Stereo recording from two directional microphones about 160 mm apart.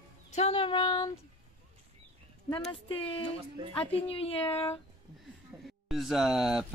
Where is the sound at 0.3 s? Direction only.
40° left (ahead or behind).